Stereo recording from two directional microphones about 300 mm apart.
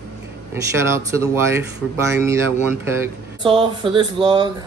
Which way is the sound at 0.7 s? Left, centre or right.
Centre.